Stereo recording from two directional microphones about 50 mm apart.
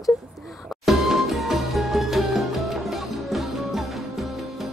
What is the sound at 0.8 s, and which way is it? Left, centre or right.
Music, centre.